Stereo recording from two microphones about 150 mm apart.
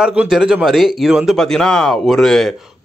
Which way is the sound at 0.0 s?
5° right (ahead or behind).